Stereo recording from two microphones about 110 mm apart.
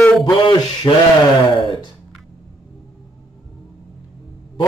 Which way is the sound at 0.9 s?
35° left (ahead or behind).